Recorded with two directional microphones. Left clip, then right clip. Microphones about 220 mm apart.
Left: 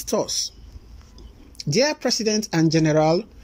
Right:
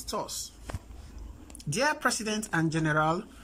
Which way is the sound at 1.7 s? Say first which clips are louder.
Left 6 dB; 15° left (ahead or behind).